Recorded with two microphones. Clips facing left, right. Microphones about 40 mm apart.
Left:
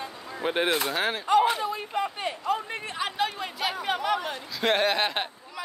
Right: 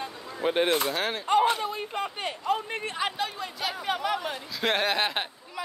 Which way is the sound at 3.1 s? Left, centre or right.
Centre.